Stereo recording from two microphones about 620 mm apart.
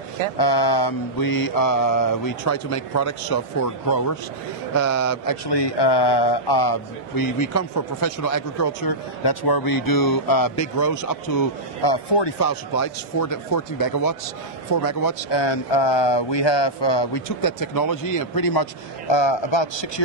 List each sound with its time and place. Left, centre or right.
0.4 s mantra: left
12.4 s speech: left
15.3 s speech: left